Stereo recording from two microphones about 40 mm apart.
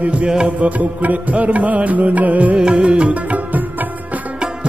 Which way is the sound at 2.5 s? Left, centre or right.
Right.